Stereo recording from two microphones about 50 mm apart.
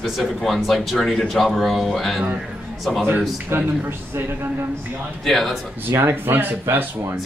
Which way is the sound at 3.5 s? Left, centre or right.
Right.